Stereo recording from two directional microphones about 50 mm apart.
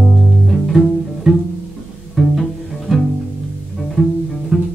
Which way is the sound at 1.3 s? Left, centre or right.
Centre.